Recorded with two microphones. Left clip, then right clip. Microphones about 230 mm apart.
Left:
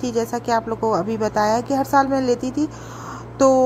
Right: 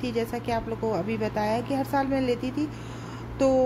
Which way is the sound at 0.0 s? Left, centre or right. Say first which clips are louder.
Left 6 dB; centre.